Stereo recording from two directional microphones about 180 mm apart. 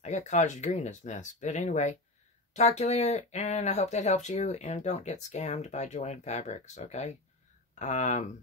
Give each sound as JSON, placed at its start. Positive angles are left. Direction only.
{"t": 0.0, "sound": "speech", "side_deg": 40}